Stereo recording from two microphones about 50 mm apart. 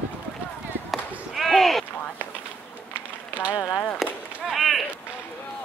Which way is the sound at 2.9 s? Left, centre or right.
Right.